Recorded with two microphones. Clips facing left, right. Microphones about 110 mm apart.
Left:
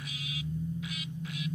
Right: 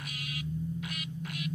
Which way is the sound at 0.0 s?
60° right (ahead or behind).